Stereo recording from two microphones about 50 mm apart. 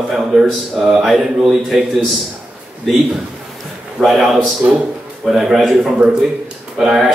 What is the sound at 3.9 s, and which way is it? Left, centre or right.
A man's voice, centre.